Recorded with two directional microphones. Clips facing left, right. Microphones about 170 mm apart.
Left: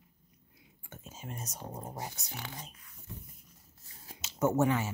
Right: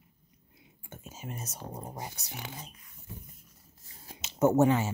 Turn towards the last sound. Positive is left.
turn(degrees=-25)  # may be behind; listen again after turning